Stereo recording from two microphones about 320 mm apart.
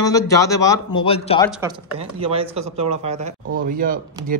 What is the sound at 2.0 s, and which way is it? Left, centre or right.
Speech, centre.